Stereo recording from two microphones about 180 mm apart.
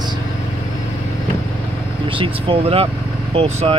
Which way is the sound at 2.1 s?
30° right (ahead or behind).